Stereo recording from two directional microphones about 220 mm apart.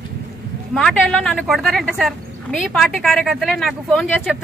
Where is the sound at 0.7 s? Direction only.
Centre (ahead or behind).